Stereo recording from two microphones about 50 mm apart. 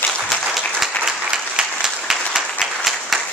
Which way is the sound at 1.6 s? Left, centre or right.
Right.